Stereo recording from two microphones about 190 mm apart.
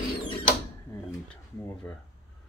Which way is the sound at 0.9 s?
10° left (ahead or behind).